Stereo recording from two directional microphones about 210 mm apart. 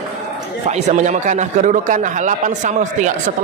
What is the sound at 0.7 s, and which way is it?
A man's voice, 35° right (ahead or behind).